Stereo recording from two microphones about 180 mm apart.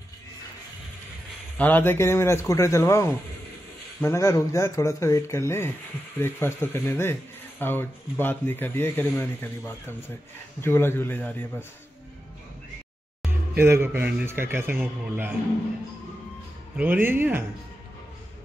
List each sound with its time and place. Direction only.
1.6 s speech: 10° left (ahead or behind)
13.6 s a man's voice: 15° right (ahead or behind)
16.7 s a man's voice: 10° right (ahead or behind)